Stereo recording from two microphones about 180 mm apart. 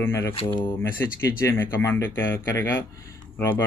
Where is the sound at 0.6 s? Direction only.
10° left (ahead or behind).